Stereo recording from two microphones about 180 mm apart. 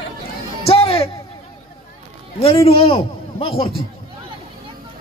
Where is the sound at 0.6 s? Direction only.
30° left (ahead or behind).